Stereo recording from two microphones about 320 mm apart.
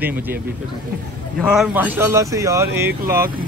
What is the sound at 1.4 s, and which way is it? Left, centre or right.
A man's voice, centre.